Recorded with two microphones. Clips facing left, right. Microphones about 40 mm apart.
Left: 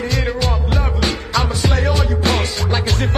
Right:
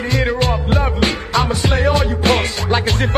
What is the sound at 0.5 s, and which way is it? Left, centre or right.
Music, right.